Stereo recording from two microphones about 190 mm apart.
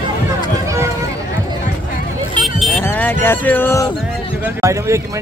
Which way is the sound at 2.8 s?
10° left (ahead or behind).